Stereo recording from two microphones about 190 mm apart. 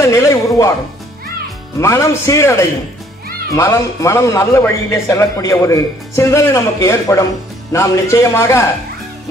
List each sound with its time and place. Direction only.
0.0 s a man's voice: 15° left (ahead or behind)
1.8 s a man's voice: 15° left (ahead or behind)